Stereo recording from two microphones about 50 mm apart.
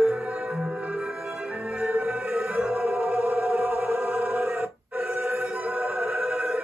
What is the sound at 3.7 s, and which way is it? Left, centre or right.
Music, right.